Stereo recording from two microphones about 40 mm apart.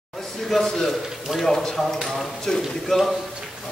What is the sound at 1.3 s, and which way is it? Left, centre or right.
Speech, centre.